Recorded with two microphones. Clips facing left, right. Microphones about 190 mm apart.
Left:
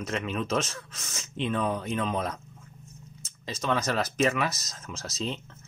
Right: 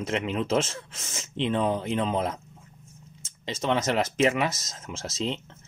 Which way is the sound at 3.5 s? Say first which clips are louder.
Right 3 dB; 25° right (ahead or behind).